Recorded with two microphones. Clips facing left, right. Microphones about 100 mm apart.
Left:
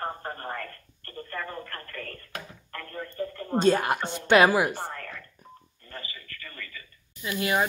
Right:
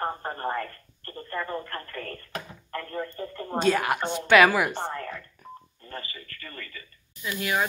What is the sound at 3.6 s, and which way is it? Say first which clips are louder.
Speech: left 1 dB; 35° left (ahead or behind).